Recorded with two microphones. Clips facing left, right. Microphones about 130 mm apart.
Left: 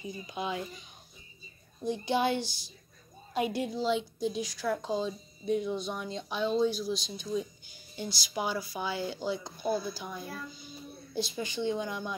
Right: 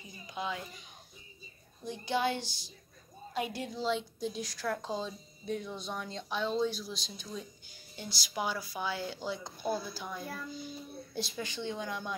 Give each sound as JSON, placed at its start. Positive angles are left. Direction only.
{"t": 0.3, "sound": "speech", "side_deg": 15}
{"t": 1.9, "sound": "speech", "side_deg": 20}
{"t": 3.8, "sound": "speech", "side_deg": 5}